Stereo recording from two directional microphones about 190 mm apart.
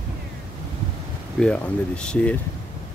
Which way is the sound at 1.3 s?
5° left (ahead or behind).